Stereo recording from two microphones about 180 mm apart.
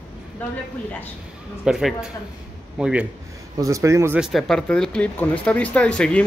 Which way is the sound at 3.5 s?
20° right (ahead or behind).